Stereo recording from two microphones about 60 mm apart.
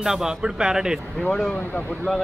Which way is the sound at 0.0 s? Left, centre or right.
Centre.